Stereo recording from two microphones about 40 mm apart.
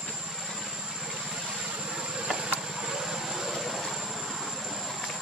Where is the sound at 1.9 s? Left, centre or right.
Centre.